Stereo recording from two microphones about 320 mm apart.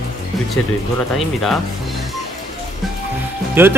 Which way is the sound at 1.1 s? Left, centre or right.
Centre.